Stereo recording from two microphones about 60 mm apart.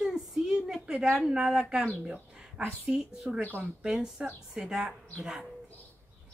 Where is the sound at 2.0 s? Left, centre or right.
Centre.